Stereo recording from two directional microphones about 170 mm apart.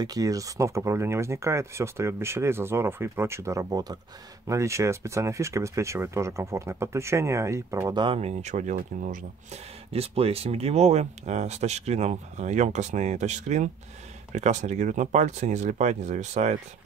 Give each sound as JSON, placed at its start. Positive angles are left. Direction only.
{"t": 0.0, "sound": "speech", "side_deg": -20}
{"t": 8.0, "sound": "speech", "side_deg": -35}